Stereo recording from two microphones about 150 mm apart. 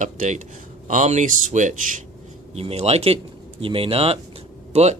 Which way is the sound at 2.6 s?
45° right (ahead or behind).